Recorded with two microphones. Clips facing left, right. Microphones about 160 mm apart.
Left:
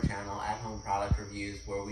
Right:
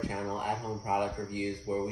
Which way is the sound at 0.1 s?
20° right (ahead or behind).